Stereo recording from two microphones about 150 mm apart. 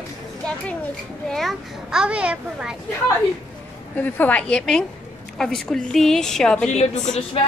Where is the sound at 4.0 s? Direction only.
10° left (ahead or behind).